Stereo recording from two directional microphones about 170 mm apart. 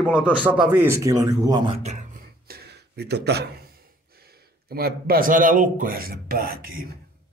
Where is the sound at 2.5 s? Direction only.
70° right (ahead or behind).